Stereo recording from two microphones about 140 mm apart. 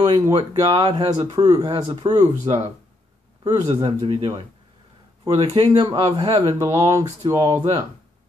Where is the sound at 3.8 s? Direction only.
35° right (ahead or behind).